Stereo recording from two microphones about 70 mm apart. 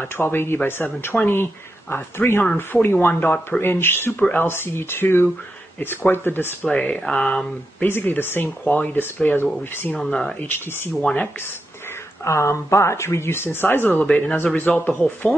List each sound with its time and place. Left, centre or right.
0.0 s speech: left
6.7 s speech: centre
7.8 s speech: left
10.0 s speech: centre
10.4 s speech: left
12.3 s speech: left
13.8 s speech: centre
14.3 s speech: left